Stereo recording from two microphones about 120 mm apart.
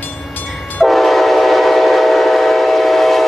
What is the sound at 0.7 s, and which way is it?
Train, centre (ahead or behind).